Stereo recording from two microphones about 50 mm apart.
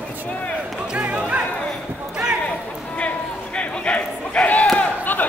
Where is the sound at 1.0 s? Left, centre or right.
Right.